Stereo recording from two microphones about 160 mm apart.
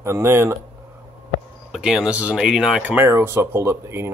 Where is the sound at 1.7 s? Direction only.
5° right (ahead or behind).